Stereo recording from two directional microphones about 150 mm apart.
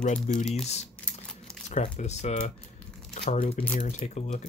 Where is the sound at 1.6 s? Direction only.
50° left (ahead or behind).